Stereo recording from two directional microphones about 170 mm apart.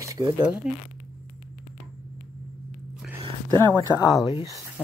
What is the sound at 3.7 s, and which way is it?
Speech, 20° left (ahead or behind).